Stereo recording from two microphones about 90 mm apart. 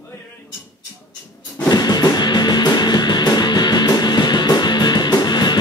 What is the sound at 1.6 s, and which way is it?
Music, 45° left (ahead or behind).